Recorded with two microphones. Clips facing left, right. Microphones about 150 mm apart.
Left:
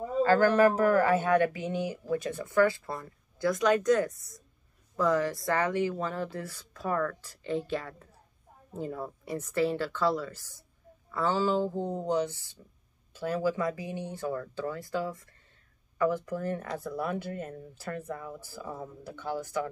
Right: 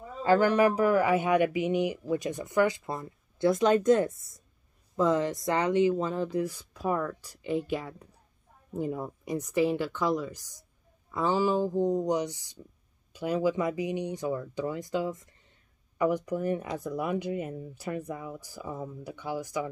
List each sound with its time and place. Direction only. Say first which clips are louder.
0.2 s speech: even; 15° right (ahead or behind)